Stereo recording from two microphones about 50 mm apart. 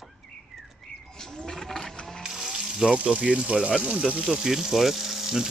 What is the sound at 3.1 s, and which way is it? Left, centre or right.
Speech, right.